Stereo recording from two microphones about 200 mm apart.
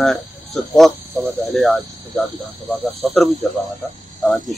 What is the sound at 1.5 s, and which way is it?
Speech, centre (ahead or behind).